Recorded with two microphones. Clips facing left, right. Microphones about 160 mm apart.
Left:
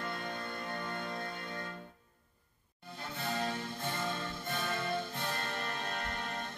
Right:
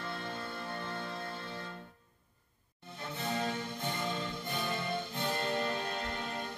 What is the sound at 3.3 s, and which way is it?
Music, 20° right (ahead or behind).